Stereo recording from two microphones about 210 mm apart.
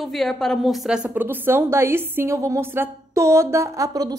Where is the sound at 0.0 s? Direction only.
Centre (ahead or behind).